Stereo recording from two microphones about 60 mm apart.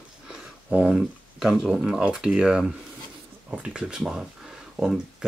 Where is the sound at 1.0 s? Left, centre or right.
Centre.